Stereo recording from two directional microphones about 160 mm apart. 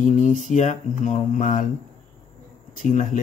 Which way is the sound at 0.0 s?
50° left (ahead or behind).